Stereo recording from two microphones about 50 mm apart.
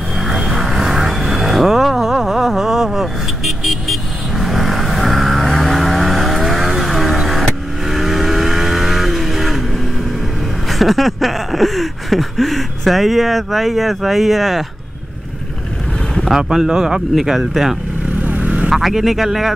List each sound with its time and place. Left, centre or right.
0.2 s vehicle: centre
10.7 s a sound: centre
16.3 s speech: centre
18.2 s vehicle: right
18.7 s speech: centre